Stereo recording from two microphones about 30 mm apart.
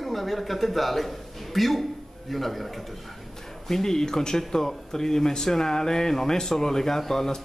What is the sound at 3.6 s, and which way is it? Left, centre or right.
A man's voice, centre.